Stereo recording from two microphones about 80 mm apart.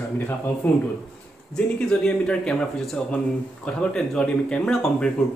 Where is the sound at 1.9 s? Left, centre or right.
Centre.